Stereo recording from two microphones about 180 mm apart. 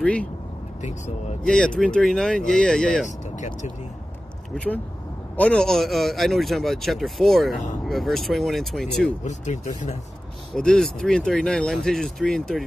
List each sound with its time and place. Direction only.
0.0 s speech: 5° left (ahead or behind)
1.4 s speech: 5° left (ahead or behind)
3.3 s vehicle: 40° left (ahead or behind)
5.3 s speech: 5° left (ahead or behind)
9.2 s speech: 40° left (ahead or behind)
10.5 s speech: 5° left (ahead or behind)